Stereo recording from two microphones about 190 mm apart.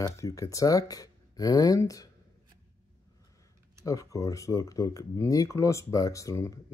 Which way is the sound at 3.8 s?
15° left (ahead or behind).